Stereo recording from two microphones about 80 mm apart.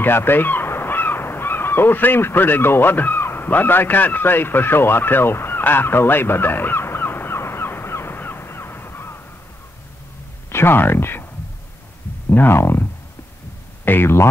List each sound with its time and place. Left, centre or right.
0.0 s caw: left
10.5 s speech: left
12.3 s speech: left
13.8 s speech: left